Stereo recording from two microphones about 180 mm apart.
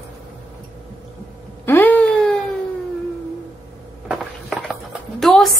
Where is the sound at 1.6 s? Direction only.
10° left (ahead or behind).